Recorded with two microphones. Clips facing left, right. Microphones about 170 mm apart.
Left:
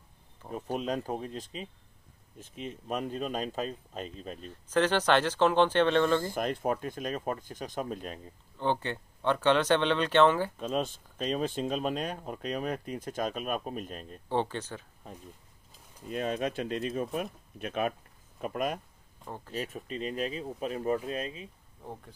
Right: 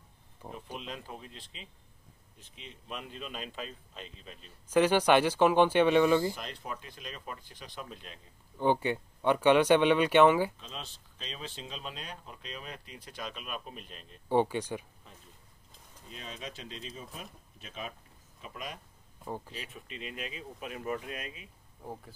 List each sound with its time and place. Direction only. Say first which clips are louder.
0.5 s speech: left 9 dB; 45° left (ahead or behind)
4.5 s speech: right 2 dB; 10° right (ahead or behind)
6.3 s speech: left 11 dB; 50° left (ahead or behind)
8.5 s speech: right 3 dB; 10° right (ahead or behind)
10.6 s speech: left 14 dB; 50° left (ahead or behind)
14.3 s speech: right 3 dB; 10° right (ahead or behind)
16.1 s speech: left 13 dB; 55° left (ahead or behind)
19.2 s speech: right 3 dB; 10° right (ahead or behind)
19.5 s speech: left 9 dB; 40° left (ahead or behind)
21.8 s speech: even; 5° right (ahead or behind)